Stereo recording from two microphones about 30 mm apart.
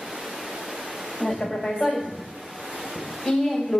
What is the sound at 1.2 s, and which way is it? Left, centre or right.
Speech, centre.